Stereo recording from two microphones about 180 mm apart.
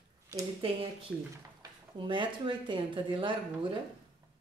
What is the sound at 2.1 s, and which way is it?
Speech, 25° right (ahead or behind).